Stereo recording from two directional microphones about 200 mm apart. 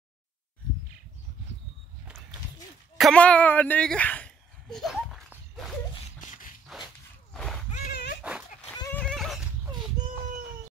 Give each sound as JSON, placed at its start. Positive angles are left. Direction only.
{"t": 3.0, "sound": "a sound", "side_deg": 5}
{"t": 6.2, "sound": "shuffle", "side_deg": 40}
{"t": 7.3, "sound": "a sound", "side_deg": 5}
{"t": 8.2, "sound": "dog", "side_deg": -5}
{"t": 8.7, "sound": "horse", "side_deg": 15}
{"t": 9.0, "sound": "neigh", "side_deg": 0}